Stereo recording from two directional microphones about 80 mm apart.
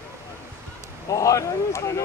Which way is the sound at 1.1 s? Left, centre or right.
Left.